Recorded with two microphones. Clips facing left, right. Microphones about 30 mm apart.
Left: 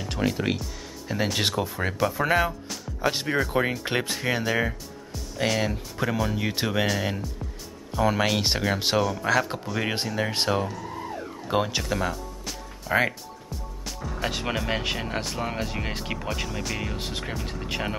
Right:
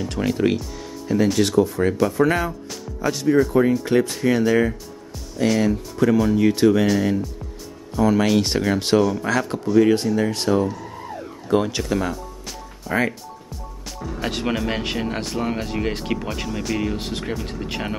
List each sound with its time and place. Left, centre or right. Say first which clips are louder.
0.0 s speech: right 6 dB; centre
1.1 s speech: right 8 dB; centre
3.1 s speech: right 7 dB; left
4.1 s speech: right 7 dB; centre
8.0 s speech: right 5 dB; centre
11.4 s music: right 5 dB; centre
13.8 s speech: right 3 dB; centre